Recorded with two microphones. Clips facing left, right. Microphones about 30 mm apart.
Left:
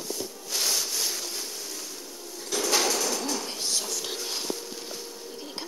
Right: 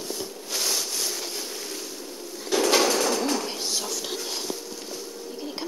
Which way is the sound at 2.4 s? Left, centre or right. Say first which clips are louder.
Right 5 dB; right.